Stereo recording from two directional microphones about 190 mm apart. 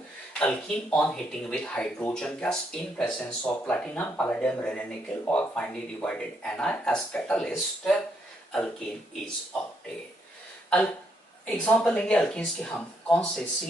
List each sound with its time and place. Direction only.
0.4 s speech: 5° left (ahead or behind)
11.4 s speech: 5° left (ahead or behind)